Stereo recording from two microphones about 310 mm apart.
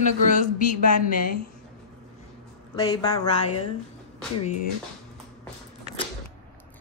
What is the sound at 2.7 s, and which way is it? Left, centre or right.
Speech, centre.